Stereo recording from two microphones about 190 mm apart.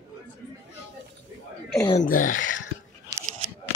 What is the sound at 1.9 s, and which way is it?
Speech, 45° left (ahead or behind).